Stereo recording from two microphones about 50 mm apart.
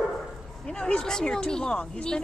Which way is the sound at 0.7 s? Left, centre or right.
Centre.